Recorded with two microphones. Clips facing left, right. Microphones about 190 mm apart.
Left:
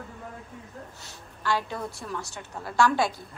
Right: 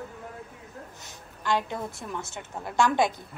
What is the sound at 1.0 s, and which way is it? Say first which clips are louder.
A woman's voice: left 2 dB; 20° right (ahead or behind).